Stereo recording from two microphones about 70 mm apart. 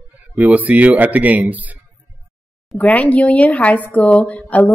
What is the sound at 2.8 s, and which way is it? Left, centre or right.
A woman's voice, left.